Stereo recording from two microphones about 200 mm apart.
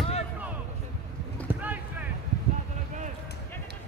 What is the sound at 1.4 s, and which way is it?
Clip-clop, 10° right (ahead or behind).